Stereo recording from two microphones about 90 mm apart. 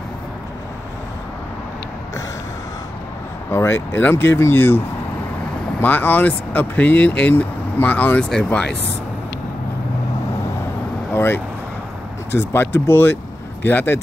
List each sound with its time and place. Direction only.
3.5 s speech: 30° left (ahead or behind)
11.1 s speech: 25° left (ahead or behind)